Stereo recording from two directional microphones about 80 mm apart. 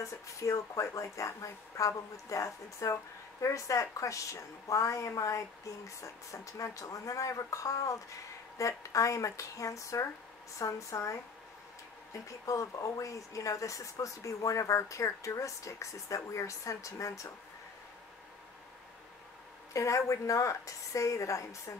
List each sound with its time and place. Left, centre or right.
0.0 s a woman's voice: left
19.7 s a woman's voice: left